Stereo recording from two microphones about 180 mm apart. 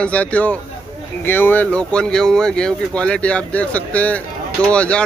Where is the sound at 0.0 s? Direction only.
5° left (ahead or behind).